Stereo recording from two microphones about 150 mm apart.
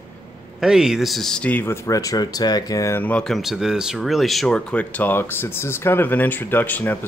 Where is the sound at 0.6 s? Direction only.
5° right (ahead or behind).